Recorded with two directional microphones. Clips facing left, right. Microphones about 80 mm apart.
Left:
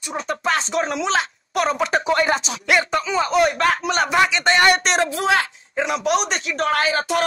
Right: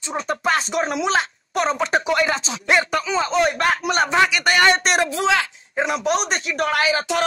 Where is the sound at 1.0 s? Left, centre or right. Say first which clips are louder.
Right 2 dB; right.